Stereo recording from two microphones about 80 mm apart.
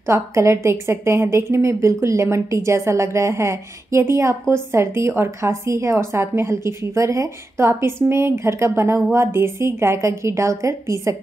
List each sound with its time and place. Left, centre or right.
0.0 s a woman's voice: right